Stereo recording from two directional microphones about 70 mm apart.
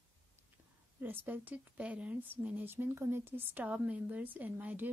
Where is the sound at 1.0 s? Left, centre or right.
Right.